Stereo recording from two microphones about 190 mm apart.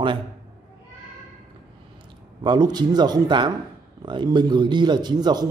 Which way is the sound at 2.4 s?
20° right (ahead or behind).